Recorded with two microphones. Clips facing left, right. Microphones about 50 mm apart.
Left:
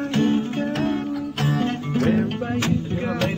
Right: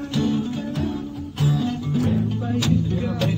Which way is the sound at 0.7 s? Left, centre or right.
Left.